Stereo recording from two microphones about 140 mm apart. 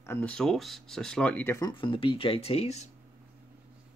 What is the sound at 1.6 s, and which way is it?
Speech, 35° left (ahead or behind).